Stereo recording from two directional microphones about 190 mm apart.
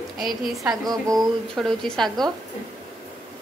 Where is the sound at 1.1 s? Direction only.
Centre (ahead or behind).